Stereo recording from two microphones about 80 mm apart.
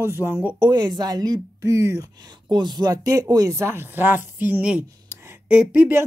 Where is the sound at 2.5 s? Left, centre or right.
Right.